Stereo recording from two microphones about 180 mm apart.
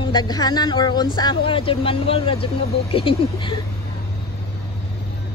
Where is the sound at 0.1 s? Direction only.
20° left (ahead or behind).